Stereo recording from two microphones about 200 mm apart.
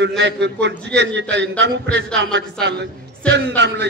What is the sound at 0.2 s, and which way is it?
A man's voice, 60° right (ahead or behind).